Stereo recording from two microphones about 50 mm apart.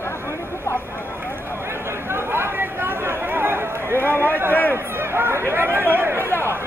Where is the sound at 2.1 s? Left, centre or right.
Right.